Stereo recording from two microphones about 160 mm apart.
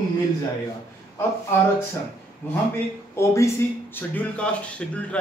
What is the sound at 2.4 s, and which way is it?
Speech, 10° left (ahead or behind).